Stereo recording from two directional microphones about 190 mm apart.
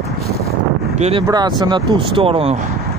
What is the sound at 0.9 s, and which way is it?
Speech, 35° right (ahead or behind).